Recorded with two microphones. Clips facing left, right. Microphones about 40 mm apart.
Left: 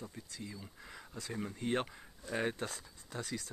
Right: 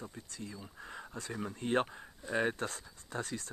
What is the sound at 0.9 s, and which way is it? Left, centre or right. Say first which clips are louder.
Speech: right 4 dB; right.